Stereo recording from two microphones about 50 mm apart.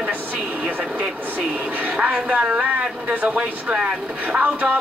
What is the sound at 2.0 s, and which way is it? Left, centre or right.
A woman's voice, right.